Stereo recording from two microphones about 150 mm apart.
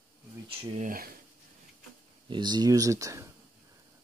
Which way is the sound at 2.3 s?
30° right (ahead or behind).